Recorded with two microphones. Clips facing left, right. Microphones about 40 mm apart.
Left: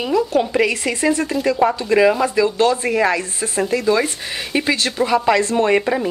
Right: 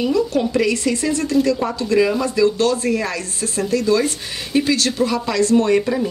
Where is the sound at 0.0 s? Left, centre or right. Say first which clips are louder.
Left 1 dB; left.